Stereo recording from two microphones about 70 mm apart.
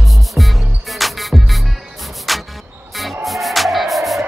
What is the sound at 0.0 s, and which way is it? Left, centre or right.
Music, centre.